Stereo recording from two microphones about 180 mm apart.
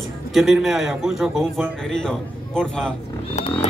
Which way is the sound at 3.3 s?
35° left (ahead or behind).